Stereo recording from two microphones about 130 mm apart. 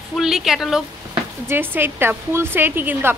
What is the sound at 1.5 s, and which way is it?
A woman's voice, 15° right (ahead or behind).